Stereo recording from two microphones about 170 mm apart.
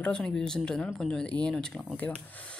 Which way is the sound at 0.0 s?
5° left (ahead or behind).